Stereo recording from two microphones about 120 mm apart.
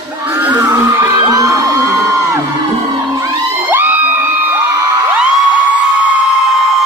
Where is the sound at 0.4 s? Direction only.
25° right (ahead or behind).